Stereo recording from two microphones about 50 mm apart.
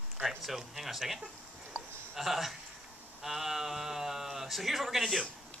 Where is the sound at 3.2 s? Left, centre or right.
Centre.